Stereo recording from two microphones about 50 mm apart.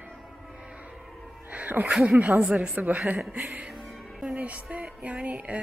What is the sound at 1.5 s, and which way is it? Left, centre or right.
Speech, right.